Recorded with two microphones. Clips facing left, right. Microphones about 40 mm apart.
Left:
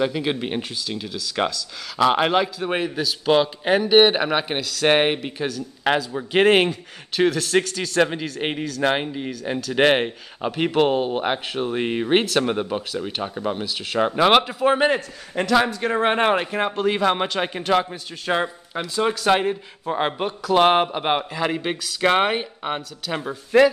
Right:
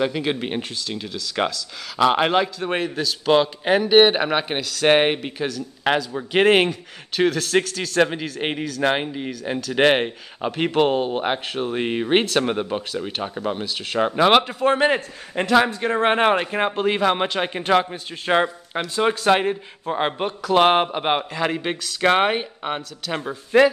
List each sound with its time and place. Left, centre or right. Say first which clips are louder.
0.0 s speech: even; centre
15.3 s speech: right 1 dB; centre
16.6 s a man's voice: right 1 dB; centre
17.0 s speech: right 1 dB; centre
17.9 s a man's voice: right 3 dB; right
19.2 s speech: right 1 dB; centre